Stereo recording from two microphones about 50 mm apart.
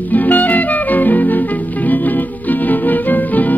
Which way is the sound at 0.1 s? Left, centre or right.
Left.